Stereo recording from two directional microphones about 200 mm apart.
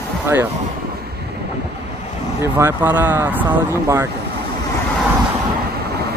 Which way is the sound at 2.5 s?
10° right (ahead or behind).